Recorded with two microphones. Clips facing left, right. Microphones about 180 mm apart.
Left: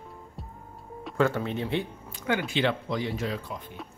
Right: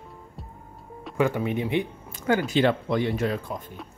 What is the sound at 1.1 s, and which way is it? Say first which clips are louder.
Speech: right 2 dB; 15° right (ahead or behind).